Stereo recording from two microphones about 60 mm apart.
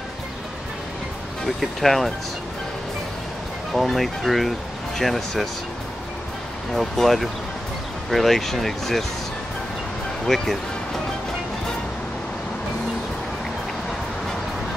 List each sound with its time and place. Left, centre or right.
1.4 s speech: centre
3.7 s speech: centre
6.7 s speech: centre
10.2 s speech: centre